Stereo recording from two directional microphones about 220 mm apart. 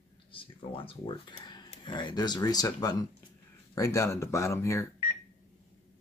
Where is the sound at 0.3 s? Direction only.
25° left (ahead or behind).